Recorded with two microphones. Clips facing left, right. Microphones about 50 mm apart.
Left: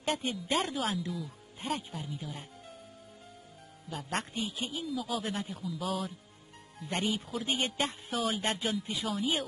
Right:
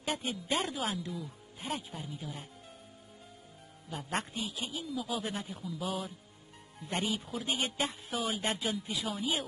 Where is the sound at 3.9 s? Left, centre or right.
Centre.